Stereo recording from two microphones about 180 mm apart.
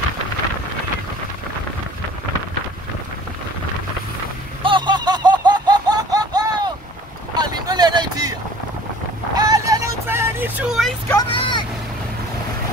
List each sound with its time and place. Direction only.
4.6 s laughter: 25° right (ahead or behind)
7.3 s a sound: 25° right (ahead or behind)
9.3 s vehicle: 20° right (ahead or behind); by 11.0 s centre (ahead or behind)
11.2 s vehicle: 25° left (ahead or behind)